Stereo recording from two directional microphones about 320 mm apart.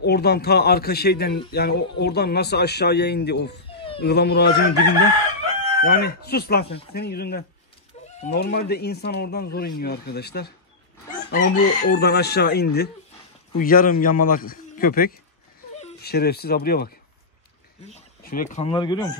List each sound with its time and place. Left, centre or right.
0.0 s speech: left
3.6 s a sound: centre
4.0 s speech: left; by 19.0 s centre